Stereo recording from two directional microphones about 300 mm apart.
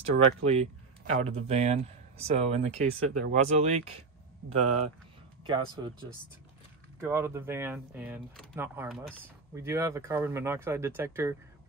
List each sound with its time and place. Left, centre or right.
0.1 s speech: right
7.0 s speech: centre